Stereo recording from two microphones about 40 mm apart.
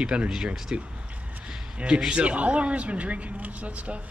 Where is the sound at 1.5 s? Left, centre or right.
Right.